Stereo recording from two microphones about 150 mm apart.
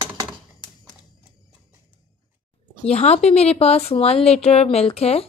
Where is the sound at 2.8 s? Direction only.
45° left (ahead or behind).